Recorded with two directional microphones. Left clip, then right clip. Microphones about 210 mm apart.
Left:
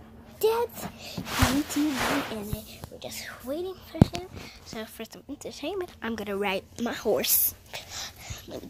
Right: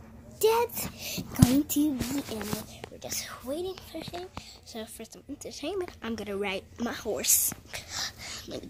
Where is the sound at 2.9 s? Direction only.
5° left (ahead or behind).